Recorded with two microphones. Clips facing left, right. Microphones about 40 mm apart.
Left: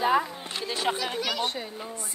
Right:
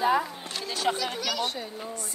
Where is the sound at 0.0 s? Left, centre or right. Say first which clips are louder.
Left 1 dB; centre.